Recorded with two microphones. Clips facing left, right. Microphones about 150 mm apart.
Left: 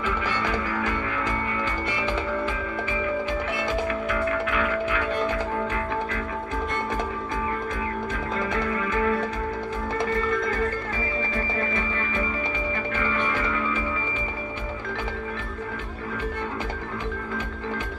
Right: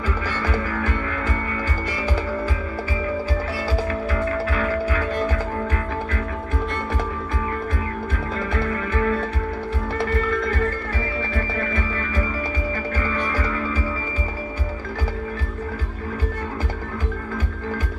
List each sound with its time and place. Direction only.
3.7 s music: 35° right (ahead or behind)
8.4 s music: 40° right (ahead or behind)
11.3 s music: 25° left (ahead or behind)
12.9 s music: 40° right (ahead or behind)